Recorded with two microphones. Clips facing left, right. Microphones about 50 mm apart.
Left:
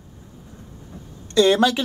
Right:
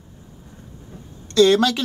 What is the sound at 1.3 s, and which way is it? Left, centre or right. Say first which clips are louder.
Speech: right 1 dB; centre.